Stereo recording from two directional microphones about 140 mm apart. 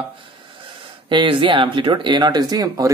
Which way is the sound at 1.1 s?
40° right (ahead or behind).